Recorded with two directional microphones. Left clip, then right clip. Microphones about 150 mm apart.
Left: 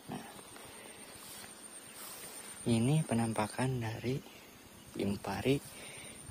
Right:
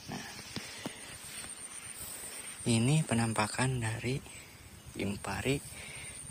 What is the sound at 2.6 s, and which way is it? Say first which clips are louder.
Speech: right 2 dB; 5° left (ahead or behind).